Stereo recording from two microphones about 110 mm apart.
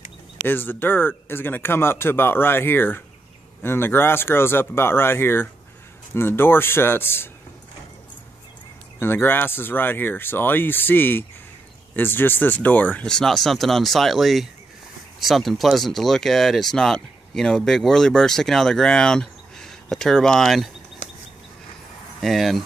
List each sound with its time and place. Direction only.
0.4 s speech: 20° left (ahead or behind)
9.0 s speech: 20° left (ahead or behind); by 20.7 s centre (ahead or behind)
22.2 s speech: centre (ahead or behind)